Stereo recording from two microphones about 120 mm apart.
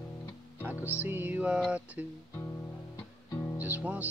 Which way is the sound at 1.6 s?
10° right (ahead or behind).